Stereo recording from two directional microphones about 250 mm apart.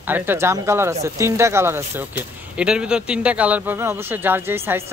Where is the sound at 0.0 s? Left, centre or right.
Centre.